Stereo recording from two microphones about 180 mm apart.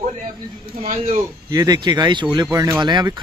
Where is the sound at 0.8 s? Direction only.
35° right (ahead or behind).